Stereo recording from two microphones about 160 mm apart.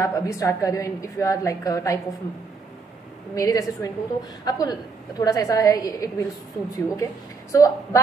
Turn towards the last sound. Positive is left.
turn(degrees=20)  # may be behind; listen again after turning